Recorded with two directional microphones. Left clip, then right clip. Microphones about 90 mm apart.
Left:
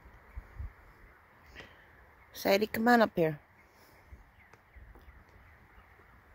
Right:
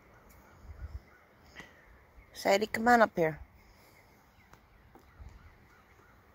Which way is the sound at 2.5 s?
90° left.